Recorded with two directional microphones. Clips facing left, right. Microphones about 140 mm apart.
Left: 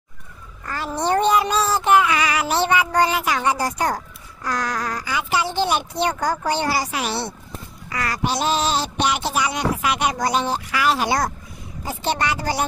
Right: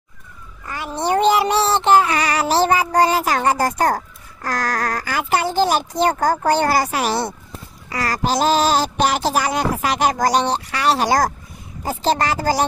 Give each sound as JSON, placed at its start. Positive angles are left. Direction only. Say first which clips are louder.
{"t": 0.7, "sound": "child singing", "louder": "right 1 dB", "side_deg": -15}
{"t": 3.3, "sound": "a child's voice", "louder": "right 4 dB", "side_deg": -50}
{"t": 7.9, "sound": "speech", "louder": "right 3 dB", "side_deg": -35}
{"t": 10.5, "sound": "child singing", "louder": "right 2 dB", "side_deg": -30}
{"t": 11.8, "sound": "speech", "louder": "right 4 dB", "side_deg": -45}